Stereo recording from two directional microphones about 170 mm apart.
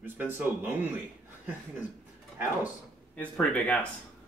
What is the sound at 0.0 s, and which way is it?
Speech, 10° right (ahead or behind).